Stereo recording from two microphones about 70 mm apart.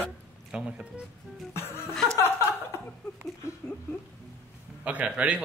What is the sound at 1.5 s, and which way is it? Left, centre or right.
Music, left.